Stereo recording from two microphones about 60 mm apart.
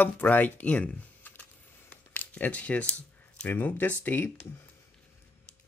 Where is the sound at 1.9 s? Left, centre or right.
Left.